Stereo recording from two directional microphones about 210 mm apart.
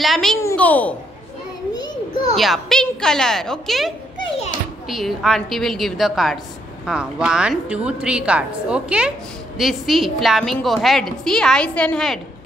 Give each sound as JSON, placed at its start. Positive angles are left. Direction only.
{"t": 0.0, "sound": "a sound", "side_deg": 0}
{"t": 0.4, "sound": "a child's voice", "side_deg": 10}
{"t": 2.3, "sound": "a woman's voice", "side_deg": 0}